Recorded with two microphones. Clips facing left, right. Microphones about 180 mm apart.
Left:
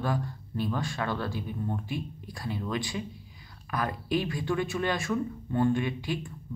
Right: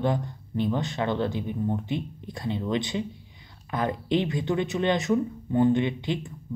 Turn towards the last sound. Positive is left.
turn(degrees=-20)  # may be behind; listen again after turning